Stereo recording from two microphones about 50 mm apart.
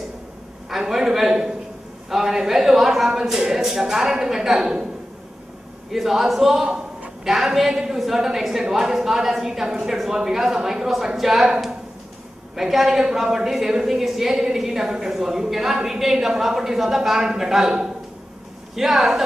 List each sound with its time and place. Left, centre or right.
0.7 s a man's voice: centre
5.9 s a man's voice: centre
6.6 s a sound: centre
7.2 s a woman's voice: centre
12.5 s a woman's voice: centre
18.8 s a man's voice: centre